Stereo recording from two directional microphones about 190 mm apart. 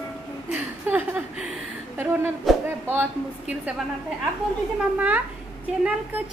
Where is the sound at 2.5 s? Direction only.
Centre (ahead or behind).